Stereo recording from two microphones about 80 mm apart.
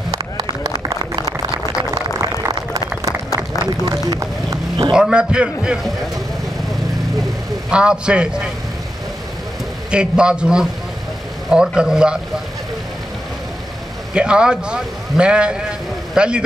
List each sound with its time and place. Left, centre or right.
0.1 s a sound: right
0.5 s run: right
3.9 s a sound: right
4.9 s a man's voice: centre
7.7 s a man's voice: centre
9.8 s a man's voice: centre
14.1 s a man's voice: centre